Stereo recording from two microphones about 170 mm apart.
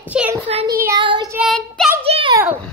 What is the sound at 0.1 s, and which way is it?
Speech, 5° right (ahead or behind).